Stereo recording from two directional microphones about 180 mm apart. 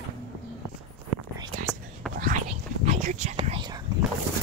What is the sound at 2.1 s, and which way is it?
Whispering, 50° right (ahead or behind).